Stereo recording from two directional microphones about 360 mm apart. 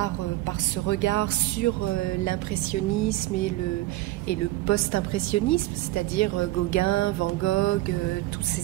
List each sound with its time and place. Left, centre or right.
0.8 s a woman's voice: left